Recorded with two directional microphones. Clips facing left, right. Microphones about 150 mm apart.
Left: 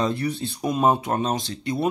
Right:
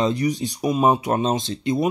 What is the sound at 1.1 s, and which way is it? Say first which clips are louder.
Speech: right 3 dB; 25° right (ahead or behind).